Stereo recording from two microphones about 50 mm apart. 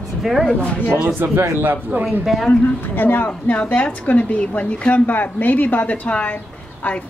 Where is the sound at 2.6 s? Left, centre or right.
Left.